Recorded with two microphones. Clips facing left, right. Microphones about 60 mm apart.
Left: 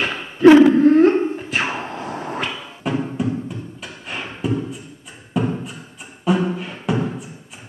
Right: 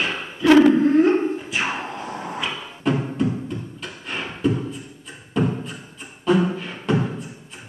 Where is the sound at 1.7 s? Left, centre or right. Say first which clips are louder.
Left 1 dB; left.